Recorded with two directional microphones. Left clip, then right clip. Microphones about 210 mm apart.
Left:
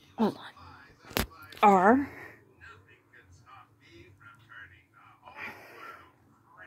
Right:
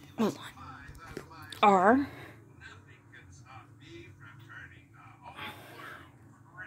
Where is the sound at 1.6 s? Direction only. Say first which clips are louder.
Left 2 dB; centre (ahead or behind).